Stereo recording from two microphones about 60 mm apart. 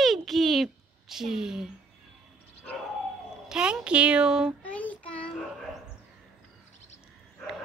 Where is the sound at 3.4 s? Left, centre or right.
Centre.